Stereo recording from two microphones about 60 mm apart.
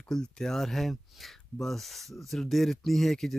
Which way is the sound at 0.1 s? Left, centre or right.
Centre.